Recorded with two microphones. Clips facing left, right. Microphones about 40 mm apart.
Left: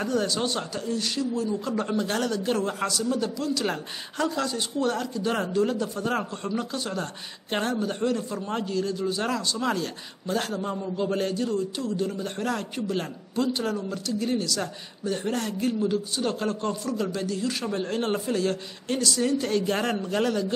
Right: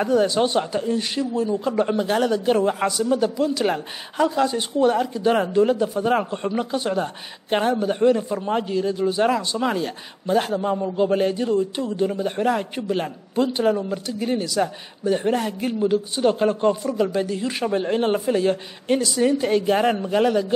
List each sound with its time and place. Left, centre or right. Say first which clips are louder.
0.0 s a man's voice: right 7 dB; right